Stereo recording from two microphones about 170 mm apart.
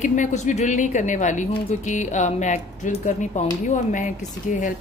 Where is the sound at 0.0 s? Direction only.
50° left (ahead or behind).